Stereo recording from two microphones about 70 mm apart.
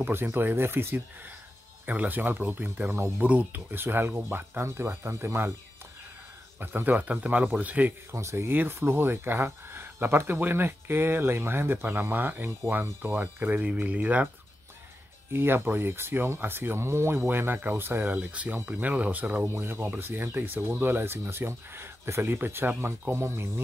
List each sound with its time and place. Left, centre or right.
0.0 s speech: right
3.3 s speech: centre
3.7 s speech: right
6.6 s speech: right
8.1 s speech: right
8.5 s speech: right
15.3 s speech: right
19.4 s speech: right